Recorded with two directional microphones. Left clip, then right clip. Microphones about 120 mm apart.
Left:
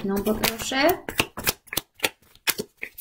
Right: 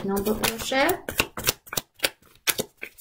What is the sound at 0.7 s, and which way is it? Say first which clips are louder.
Speech: left 1 dB; 45° left (ahead or behind).